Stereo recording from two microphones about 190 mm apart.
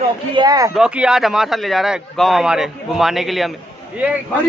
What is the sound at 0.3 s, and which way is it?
Speech, 20° right (ahead or behind).